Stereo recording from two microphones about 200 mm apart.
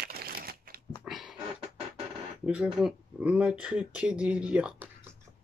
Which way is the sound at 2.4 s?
5° right (ahead or behind).